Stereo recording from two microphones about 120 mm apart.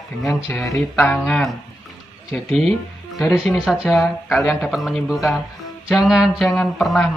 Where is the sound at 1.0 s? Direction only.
5° left (ahead or behind).